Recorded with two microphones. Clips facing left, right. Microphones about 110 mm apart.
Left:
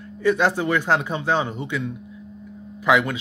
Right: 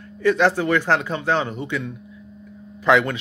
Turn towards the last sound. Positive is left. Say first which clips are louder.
# right 2 dB
turn(degrees=10)  # may be behind; listen again after turning